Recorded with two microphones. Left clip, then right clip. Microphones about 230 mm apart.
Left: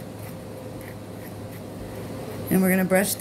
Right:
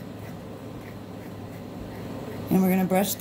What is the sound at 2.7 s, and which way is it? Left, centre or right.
Speech, right.